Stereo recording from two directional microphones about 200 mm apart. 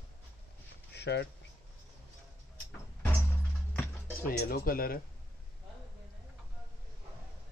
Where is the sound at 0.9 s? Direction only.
55° left (ahead or behind).